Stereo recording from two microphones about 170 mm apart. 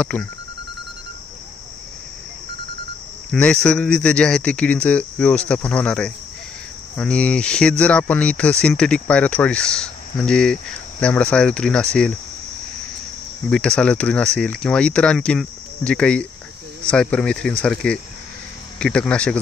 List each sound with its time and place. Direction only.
0.0 s speech: 5° left (ahead or behind)
3.3 s speech: 5° left (ahead or behind)
13.5 s speech: 5° left (ahead or behind)